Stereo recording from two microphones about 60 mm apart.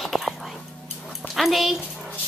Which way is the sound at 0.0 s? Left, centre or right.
Centre.